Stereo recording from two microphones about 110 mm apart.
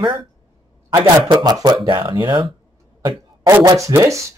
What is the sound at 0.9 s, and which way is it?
Speech, 40° right (ahead or behind).